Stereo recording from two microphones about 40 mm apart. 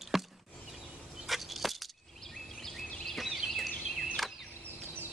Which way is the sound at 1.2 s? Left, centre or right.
Centre.